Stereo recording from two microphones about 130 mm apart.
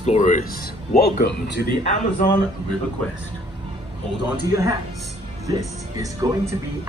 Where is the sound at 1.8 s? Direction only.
90° left.